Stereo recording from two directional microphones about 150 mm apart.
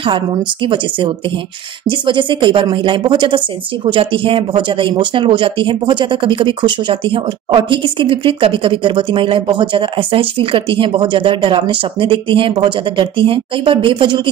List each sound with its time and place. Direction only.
0.0 s speech: 35° right (ahead or behind)